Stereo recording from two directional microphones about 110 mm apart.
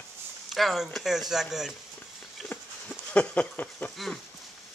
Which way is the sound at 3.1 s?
10° left (ahead or behind).